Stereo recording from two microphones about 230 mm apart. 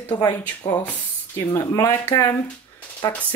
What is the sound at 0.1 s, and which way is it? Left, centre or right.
Speech, centre.